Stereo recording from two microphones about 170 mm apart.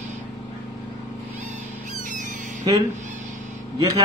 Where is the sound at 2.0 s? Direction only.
50° right (ahead or behind).